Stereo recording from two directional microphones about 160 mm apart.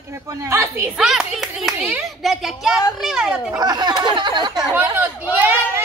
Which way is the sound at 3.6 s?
25° right (ahead or behind).